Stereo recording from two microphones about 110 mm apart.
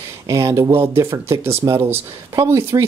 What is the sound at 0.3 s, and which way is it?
Speech, 25° right (ahead or behind).